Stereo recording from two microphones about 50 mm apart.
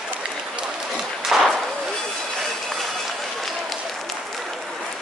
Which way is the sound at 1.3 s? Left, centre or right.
Centre.